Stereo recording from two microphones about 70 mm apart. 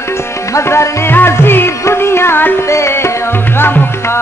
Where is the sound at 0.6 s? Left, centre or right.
Left.